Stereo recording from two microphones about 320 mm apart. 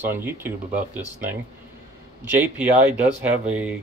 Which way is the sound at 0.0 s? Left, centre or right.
Centre.